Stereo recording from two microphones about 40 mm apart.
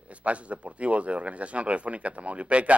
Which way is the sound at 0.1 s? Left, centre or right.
Right.